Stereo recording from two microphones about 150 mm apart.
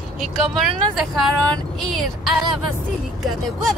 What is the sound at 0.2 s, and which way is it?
Speech, centre (ahead or behind).